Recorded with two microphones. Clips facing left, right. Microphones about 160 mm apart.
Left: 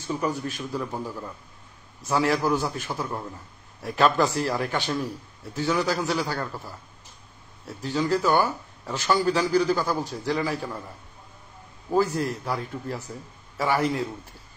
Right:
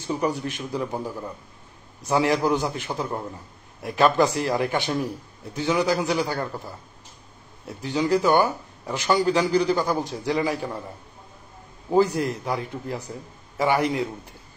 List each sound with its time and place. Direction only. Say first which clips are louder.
0.1 s speech: right 2 dB; 15° right (ahead or behind)
11.9 s speech: right 3 dB; 15° right (ahead or behind)